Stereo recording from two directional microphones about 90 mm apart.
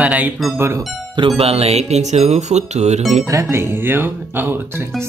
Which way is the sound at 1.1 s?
80° right.